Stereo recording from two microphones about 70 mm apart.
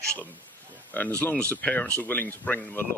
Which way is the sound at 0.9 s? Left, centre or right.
Left.